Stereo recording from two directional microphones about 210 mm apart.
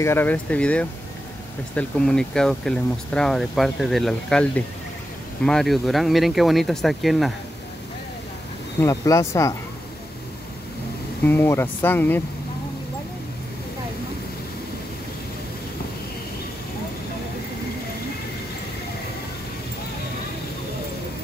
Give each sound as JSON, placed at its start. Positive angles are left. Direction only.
{"t": 0.0, "sound": "speech", "side_deg": 10}
{"t": 8.8, "sound": "speech", "side_deg": 15}
{"t": 11.2, "sound": "speech", "side_deg": 10}